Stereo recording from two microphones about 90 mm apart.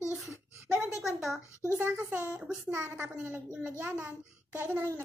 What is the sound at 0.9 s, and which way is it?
Speech, centre (ahead or behind).